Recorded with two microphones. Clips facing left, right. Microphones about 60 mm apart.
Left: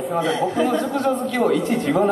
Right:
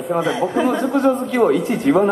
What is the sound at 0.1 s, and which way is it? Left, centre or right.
A man's voice, centre.